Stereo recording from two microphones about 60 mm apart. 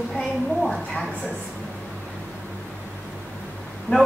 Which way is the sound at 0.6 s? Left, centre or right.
Centre.